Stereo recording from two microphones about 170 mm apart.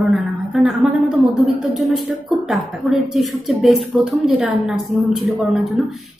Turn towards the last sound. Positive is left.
turn(degrees=0)  # may be behind; listen again after turning